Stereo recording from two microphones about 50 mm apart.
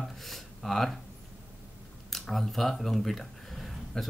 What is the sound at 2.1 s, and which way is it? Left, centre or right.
Speech, centre.